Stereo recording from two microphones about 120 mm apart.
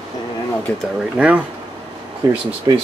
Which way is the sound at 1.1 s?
10° right (ahead or behind).